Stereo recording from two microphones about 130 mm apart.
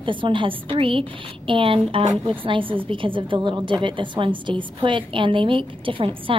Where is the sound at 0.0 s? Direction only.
40° right (ahead or behind).